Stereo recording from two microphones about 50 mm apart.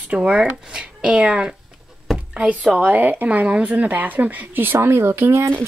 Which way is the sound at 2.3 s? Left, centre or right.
Right.